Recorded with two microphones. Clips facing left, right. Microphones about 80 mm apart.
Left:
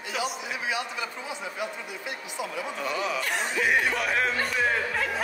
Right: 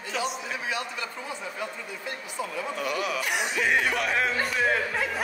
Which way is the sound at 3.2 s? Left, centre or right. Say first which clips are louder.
Right 1 dB; centre.